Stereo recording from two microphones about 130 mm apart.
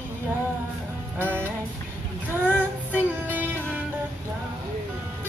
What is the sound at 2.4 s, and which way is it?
Child singing, 15° right (ahead or behind).